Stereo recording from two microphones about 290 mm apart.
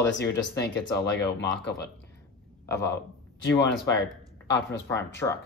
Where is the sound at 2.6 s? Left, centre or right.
Centre.